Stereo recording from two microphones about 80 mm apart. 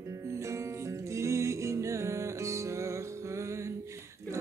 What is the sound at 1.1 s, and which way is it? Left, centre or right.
Music, right.